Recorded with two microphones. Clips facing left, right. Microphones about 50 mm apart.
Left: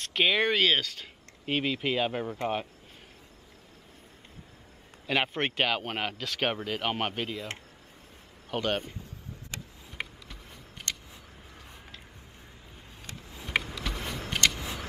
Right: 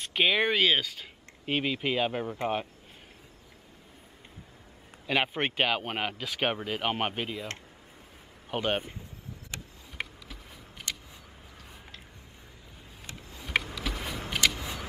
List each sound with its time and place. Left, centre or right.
0.0 s speech: centre
5.0 s speech: centre
8.5 s a man's voice: centre
9.9 s a sound: centre
13.4 s a sound: centre
14.3 s vehicle: centre